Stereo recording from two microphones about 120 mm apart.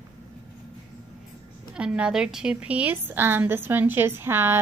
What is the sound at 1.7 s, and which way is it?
A woman's voice, 10° right (ahead or behind).